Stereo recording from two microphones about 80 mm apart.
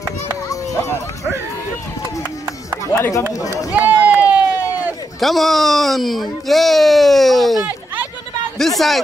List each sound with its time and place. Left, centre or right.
3.0 s speech: left
3.7 s run: right
5.2 s speech: centre
7.6 s a sound: right
8.5 s speech: centre